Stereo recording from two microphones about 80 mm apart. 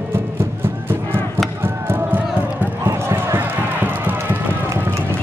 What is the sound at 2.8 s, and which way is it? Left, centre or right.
Basketball bounce, right.